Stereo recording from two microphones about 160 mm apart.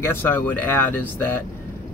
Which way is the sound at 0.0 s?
15° left (ahead or behind).